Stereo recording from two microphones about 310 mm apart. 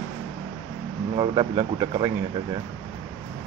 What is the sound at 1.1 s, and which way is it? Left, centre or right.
Speech, centre.